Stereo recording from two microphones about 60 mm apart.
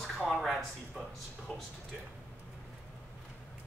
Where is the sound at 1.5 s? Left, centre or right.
Centre.